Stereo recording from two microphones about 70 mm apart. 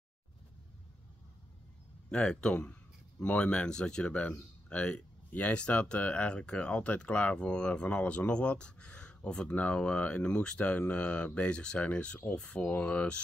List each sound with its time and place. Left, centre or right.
2.0 s speech: centre